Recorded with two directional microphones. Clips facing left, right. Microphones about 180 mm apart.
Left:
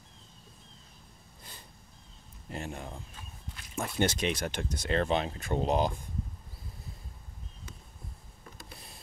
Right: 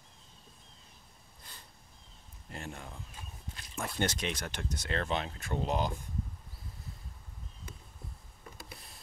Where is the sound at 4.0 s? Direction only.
10° left (ahead or behind).